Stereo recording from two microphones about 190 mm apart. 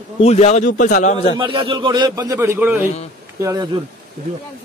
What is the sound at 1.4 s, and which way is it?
A man's voice, 25° right (ahead or behind).